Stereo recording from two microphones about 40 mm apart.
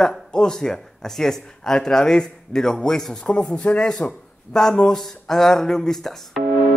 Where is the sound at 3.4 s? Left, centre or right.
Left; by 6.4 s centre.